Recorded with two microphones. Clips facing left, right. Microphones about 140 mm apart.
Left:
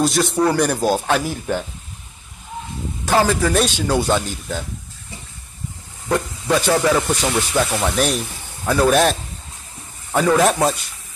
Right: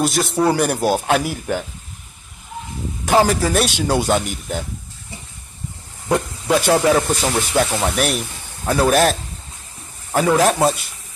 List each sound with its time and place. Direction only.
0.0 s a man's voice: centre (ahead or behind)
3.1 s a man's voice: 15° right (ahead or behind)
6.0 s a man's voice: 15° right (ahead or behind)
10.1 s a man's voice: 5° right (ahead or behind)